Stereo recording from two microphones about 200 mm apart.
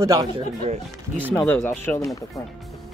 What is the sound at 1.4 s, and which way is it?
Speech, 10° left (ahead or behind).